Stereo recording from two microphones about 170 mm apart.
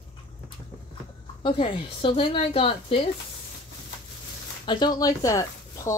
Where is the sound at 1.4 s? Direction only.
30° left (ahead or behind).